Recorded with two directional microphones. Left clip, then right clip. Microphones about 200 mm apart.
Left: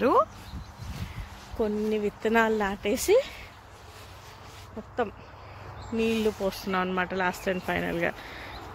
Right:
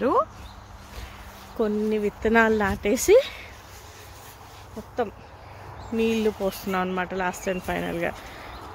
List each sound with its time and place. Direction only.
0.0 s speech: centre (ahead or behind)
1.6 s speech: 15° right (ahead or behind)
5.9 s speech: 10° right (ahead or behind)